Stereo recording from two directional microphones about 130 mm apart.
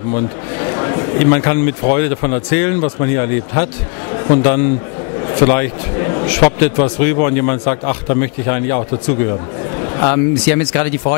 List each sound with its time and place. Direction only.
0.1 s a man's voice: 20° left (ahead or behind)